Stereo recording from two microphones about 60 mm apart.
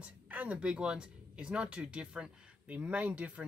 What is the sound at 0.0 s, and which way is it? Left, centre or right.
Speech, right.